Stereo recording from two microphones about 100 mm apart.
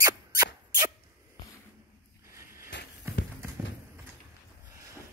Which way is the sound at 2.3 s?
25° right (ahead or behind).